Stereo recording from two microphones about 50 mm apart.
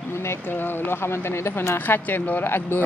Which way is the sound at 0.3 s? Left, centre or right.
Left.